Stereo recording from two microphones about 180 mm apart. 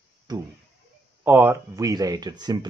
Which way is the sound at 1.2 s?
10° right (ahead or behind).